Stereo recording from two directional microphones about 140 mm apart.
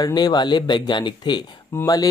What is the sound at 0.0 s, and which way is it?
Speech, 30° left (ahead or behind).